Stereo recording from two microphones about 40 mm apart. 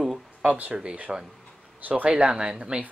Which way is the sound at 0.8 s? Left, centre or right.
Right.